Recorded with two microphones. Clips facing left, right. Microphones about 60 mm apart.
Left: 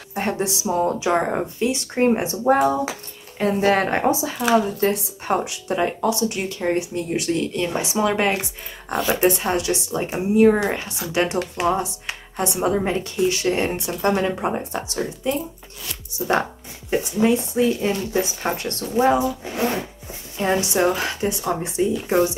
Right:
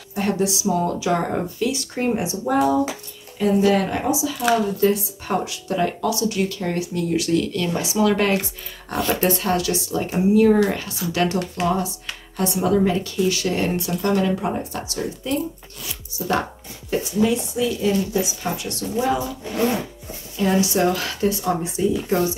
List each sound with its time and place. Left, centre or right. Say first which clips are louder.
0.1 s speech: right 2 dB; left
8.9 s speech: left 1 dB; centre
9.2 s speech: left 1 dB; left
16.9 s speech: left 1 dB; left
20.3 s speech: right 1 dB; left